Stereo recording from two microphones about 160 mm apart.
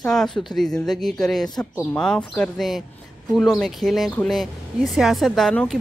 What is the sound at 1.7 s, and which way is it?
Speech, 15° left (ahead or behind).